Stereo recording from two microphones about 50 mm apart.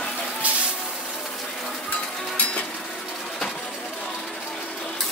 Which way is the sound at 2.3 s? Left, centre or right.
Left.